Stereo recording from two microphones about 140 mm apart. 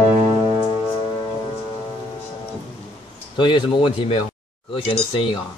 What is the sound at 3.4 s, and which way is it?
Speech, 35° left (ahead or behind).